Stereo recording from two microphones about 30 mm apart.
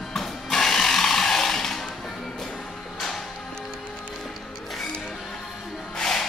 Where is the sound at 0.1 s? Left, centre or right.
Centre.